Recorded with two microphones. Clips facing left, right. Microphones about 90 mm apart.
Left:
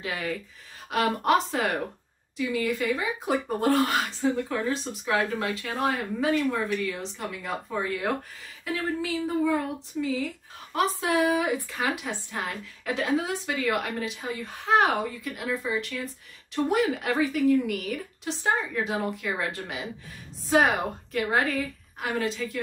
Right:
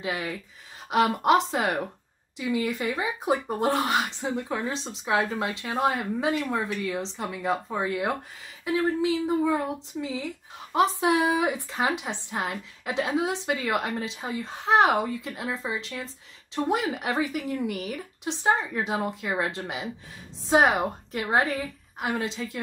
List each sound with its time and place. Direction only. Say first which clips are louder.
0.0 s speech: even; 20° right (ahead or behind)